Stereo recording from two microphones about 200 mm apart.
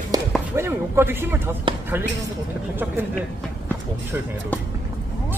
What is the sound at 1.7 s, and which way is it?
Basketball bounce, 25° right (ahead or behind).